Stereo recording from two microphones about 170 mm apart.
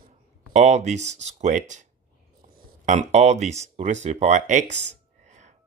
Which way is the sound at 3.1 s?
40° right (ahead or behind).